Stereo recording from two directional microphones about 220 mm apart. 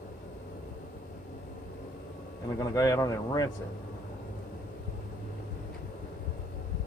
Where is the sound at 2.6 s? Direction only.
15° left (ahead or behind).